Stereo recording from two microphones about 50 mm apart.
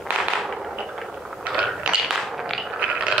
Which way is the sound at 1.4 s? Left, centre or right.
Centre.